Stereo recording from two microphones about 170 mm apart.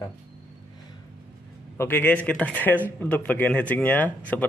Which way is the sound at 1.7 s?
10° left (ahead or behind).